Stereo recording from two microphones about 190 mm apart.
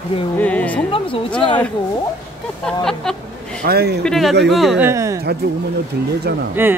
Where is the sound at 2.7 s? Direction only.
Centre (ahead or behind).